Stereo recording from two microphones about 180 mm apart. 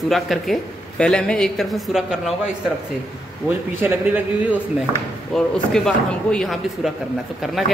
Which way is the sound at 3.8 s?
10° right (ahead or behind).